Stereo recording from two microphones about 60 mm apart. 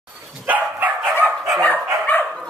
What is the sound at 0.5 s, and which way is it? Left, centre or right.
Dog, right.